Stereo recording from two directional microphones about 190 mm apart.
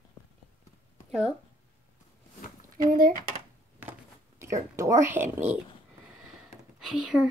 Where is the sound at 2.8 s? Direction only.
50° right (ahead or behind).